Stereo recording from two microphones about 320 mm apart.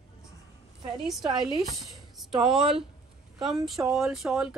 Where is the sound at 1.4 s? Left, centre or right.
Centre.